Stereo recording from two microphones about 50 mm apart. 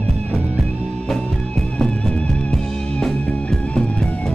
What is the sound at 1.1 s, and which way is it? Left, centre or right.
Music, centre.